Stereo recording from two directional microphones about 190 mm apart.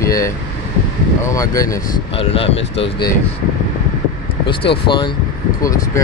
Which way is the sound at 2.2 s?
30° left (ahead or behind).